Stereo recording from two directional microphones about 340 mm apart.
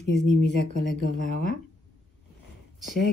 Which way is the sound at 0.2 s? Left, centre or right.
Centre.